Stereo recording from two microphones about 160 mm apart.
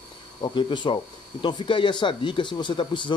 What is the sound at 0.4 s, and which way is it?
Speech, 30° left (ahead or behind).